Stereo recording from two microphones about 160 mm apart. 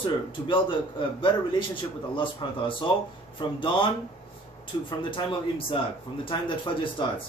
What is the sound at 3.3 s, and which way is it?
A man's voice, 30° left (ahead or behind).